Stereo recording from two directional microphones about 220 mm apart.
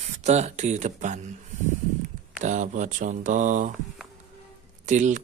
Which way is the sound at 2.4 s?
35° right (ahead or behind).